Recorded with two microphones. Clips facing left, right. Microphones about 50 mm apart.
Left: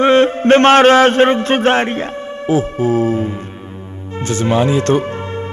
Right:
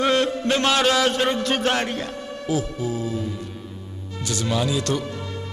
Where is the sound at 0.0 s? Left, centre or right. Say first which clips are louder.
Left 9 dB; left.